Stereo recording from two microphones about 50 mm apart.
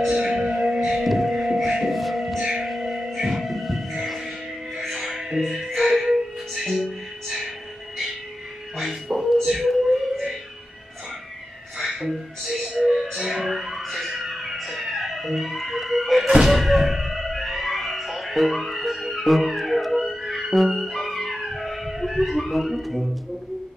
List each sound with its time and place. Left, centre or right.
0.1 s music: centre
1.9 s a sound: centre
2.6 s music: centre
8.7 s music: centre
11.8 s music: centre